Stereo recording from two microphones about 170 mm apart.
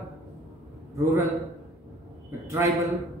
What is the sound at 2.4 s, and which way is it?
Speech, 15° right (ahead or behind).